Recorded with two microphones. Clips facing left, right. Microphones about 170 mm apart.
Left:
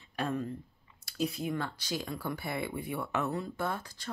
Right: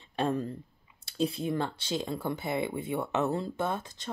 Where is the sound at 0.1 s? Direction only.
30° right (ahead or behind).